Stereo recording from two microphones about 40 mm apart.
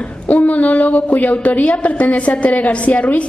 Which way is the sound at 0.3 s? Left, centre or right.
Left.